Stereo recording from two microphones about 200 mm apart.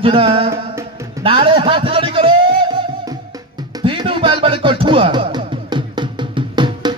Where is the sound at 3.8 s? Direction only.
25° right (ahead or behind).